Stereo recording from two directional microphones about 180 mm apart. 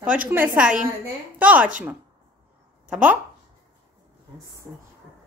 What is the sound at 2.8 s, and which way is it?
Speech, 5° right (ahead or behind).